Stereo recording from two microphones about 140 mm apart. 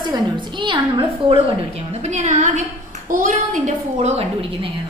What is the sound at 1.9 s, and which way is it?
Speech, 55° right (ahead or behind).